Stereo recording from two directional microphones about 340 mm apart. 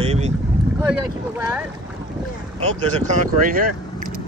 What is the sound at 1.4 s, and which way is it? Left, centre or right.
Boat, centre.